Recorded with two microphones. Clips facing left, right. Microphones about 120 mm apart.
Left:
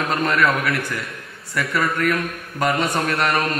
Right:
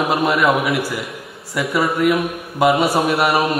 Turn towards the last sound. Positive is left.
turn(degrees=-10)  # may be behind; listen again after turning